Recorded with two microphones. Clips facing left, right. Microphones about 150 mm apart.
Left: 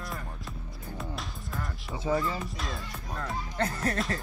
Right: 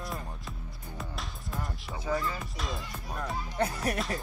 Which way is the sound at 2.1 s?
20° left (ahead or behind).